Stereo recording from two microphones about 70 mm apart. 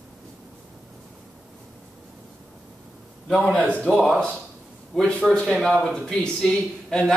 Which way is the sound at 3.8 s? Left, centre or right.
Centre.